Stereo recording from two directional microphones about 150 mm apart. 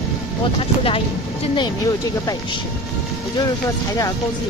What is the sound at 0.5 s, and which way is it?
Speech, 35° left (ahead or behind).